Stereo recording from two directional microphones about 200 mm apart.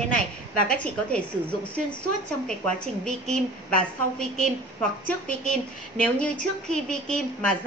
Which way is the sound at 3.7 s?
5° left (ahead or behind).